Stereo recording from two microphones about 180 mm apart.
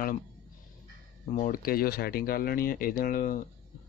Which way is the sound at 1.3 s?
50° left (ahead or behind).